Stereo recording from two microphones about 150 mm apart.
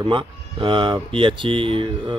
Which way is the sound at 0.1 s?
35° right (ahead or behind).